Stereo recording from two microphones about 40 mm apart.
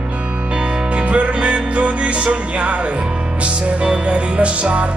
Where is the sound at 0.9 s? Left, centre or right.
Right.